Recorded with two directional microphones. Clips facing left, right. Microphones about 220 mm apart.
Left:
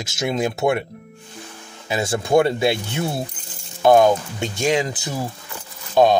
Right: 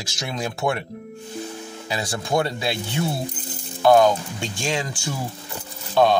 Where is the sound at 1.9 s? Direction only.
25° left (ahead or behind).